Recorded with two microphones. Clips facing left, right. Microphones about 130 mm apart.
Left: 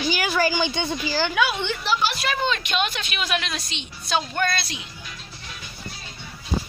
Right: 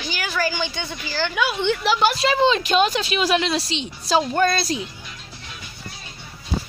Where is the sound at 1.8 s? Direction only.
75° right (ahead or behind).